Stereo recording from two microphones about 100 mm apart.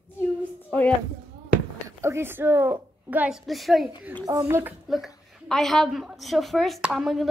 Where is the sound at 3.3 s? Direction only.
Centre (ahead or behind).